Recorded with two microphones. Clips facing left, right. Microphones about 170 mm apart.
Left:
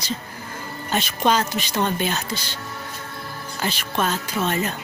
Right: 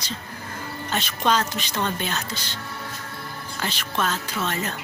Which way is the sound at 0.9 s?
10° left (ahead or behind).